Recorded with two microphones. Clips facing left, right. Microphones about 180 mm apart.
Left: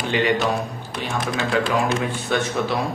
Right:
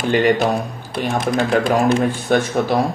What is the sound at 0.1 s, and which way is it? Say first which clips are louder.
Speech: right 5 dB; 50° right (ahead or behind).